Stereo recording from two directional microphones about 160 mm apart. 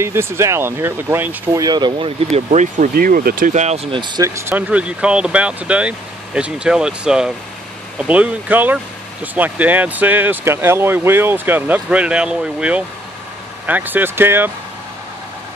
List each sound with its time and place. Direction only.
0.0 s speech: 15° right (ahead or behind)